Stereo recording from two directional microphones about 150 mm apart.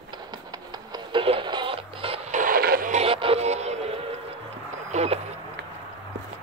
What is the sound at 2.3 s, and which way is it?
Music, 70° right (ahead or behind).